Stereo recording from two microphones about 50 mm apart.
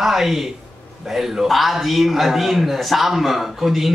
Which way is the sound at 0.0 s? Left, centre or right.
Centre.